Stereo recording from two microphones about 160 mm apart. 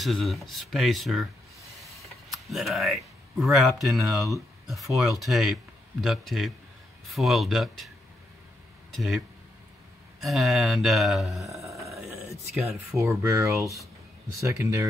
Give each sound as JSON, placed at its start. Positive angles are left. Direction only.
{"t": 0.0, "sound": "speech", "side_deg": 0}
{"t": 2.0, "sound": "a sound", "side_deg": 0}
{"t": 3.5, "sound": "speech", "side_deg": 0}
{"t": 8.9, "sound": "speech", "side_deg": 0}
{"t": 10.2, "sound": "speech", "side_deg": 0}
{"t": 11.4, "sound": "a sound", "side_deg": -20}
{"t": 12.9, "sound": "speech", "side_deg": -20}